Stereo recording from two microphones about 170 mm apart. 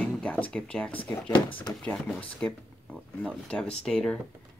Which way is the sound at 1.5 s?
25° left (ahead or behind).